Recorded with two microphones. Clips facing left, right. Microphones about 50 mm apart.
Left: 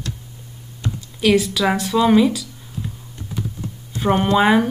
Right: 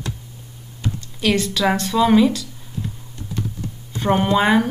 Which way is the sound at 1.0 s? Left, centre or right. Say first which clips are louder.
Left 4 dB; centre.